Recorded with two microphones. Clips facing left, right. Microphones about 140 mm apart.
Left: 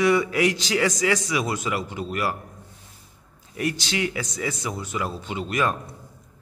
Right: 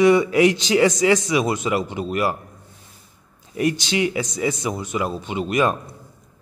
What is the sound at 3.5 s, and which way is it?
Speech, 20° right (ahead or behind).